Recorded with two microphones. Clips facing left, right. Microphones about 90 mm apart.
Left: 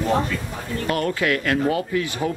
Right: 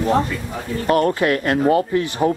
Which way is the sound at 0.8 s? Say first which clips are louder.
Right 6 dB; 35° right (ahead or behind).